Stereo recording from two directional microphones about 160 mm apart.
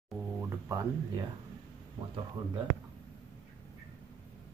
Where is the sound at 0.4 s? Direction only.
20° right (ahead or behind).